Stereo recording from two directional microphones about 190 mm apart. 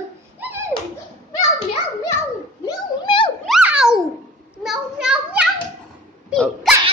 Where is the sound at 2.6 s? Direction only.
25° left (ahead or behind).